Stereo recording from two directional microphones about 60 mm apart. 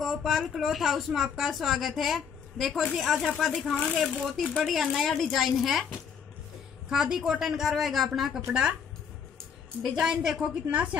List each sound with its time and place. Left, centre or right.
0.0 s speech: centre
9.9 s a woman's voice: centre
10.7 s a woman's voice: right